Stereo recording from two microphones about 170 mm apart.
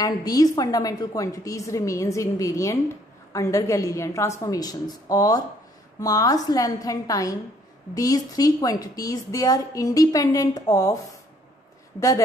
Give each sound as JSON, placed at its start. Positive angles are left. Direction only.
{"t": 0.0, "sound": "a woman's voice", "side_deg": 20}